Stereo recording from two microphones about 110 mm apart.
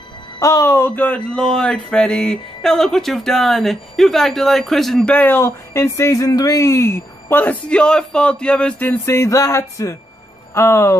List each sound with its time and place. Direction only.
0.4 s speech: 30° left (ahead or behind)